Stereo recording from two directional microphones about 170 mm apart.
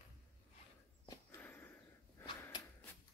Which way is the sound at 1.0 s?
20° left (ahead or behind).